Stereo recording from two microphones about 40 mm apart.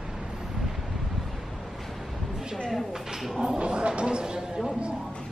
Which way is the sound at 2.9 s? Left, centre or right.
Centre.